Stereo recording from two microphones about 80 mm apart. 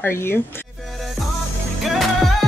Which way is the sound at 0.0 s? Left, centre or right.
Left.